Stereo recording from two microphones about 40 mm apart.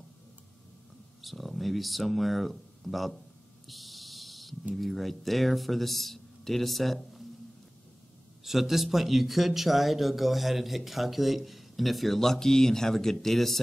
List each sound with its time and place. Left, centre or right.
1.2 s speech: centre
3.6 s a sound: centre
4.7 s speech: centre
8.5 s speech: centre